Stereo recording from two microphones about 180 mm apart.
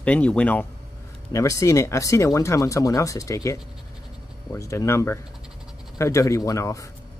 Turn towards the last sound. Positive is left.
turn(degrees=15)  # may be behind; listen again after turning